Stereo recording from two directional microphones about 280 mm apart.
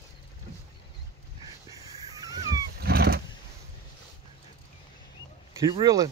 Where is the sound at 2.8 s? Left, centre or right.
Right.